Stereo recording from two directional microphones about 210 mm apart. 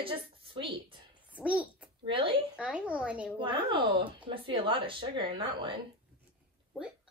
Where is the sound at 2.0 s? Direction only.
25° right (ahead or behind).